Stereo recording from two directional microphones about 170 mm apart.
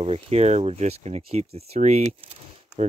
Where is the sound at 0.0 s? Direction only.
35° right (ahead or behind).